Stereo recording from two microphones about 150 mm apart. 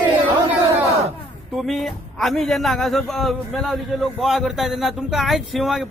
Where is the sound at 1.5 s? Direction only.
Centre (ahead or behind).